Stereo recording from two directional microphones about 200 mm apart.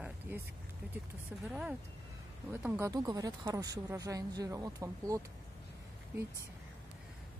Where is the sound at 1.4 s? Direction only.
5° right (ahead or behind).